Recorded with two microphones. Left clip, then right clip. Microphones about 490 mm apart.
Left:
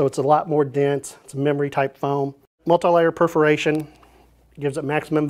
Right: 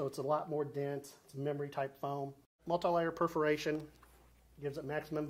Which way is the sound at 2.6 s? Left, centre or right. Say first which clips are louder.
Left 17 dB; left.